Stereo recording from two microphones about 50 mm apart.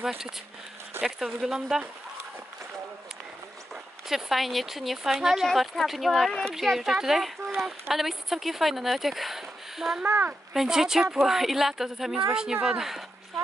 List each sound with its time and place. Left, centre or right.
1.0 s speech: centre
4.1 s speech: centre
10.0 s speech: right
10.5 s speech: centre